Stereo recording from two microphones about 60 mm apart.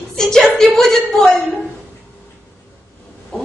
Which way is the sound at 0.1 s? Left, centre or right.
Centre.